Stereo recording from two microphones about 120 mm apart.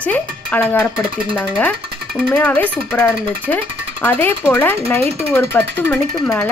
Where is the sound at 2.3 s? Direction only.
10° left (ahead or behind).